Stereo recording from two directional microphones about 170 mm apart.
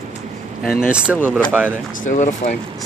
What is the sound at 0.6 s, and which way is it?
Speech, 60° left (ahead or behind).